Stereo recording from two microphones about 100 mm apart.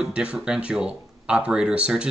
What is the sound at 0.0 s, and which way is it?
Speech, 10° right (ahead or behind).